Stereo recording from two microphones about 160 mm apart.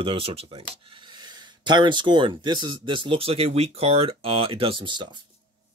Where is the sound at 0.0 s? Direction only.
35° right (ahead or behind).